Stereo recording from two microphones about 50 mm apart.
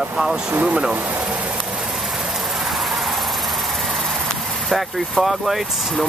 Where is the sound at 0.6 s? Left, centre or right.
Right.